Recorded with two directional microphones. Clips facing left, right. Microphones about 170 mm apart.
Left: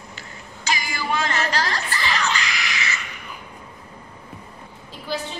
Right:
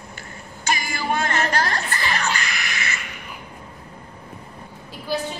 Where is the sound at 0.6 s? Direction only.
50° right (ahead or behind).